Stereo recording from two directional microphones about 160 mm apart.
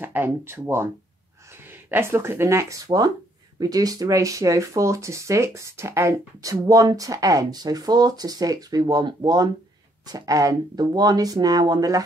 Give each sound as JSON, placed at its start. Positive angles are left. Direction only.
{"t": 0.0, "sound": "speech", "side_deg": -15}